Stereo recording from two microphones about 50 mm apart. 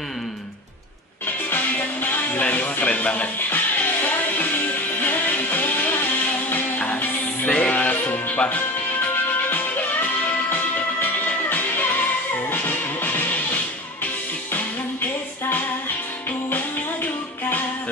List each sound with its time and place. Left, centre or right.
1.5 s music: left
2.4 s a sound: left
3.4 s music: left
7.4 s music: left
7.7 s music: left